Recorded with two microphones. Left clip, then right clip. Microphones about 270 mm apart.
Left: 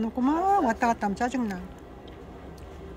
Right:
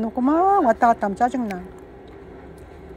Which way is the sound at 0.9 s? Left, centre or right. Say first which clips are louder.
Right 7 dB; left.